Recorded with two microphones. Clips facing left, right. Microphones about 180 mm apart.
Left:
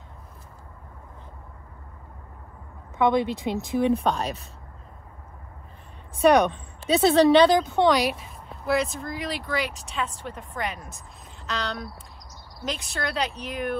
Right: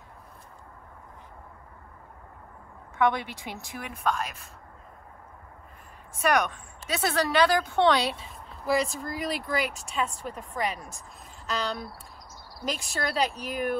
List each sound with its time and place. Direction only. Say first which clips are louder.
3.0 s speech: left 4 dB; 20° left (ahead or behind)
3.9 s speech: left 6 dB; 30° left (ahead or behind)
6.4 s speech: left 8 dB; 25° left (ahead or behind)
8.5 s speech: left 2 dB; centre (ahead or behind)